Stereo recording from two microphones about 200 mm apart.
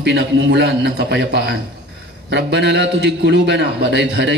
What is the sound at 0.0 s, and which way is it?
A man's voice, 60° right (ahead or behind).